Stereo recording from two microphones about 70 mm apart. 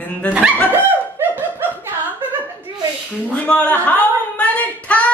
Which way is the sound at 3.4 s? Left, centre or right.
Left.